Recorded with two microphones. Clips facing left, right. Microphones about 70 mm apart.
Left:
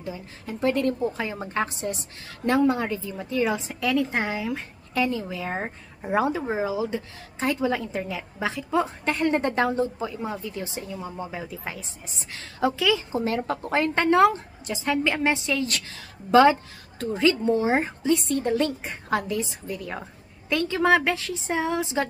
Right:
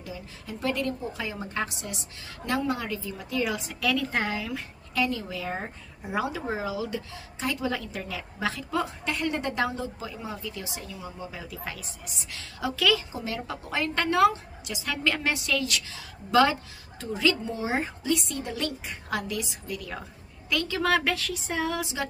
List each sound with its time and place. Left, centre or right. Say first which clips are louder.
0.0 s a woman's voice: left 4 dB; left
6.4 s a woman's voice: left 4 dB; left
8.8 s a woman's voice: left 5 dB; left
12.3 s a woman's voice: left 7 dB; left
12.7 s a woman's voice: right 3 dB; left
13.1 s a woman's voice: left 8 dB; left
15.6 s a woman's voice: left 2 dB; left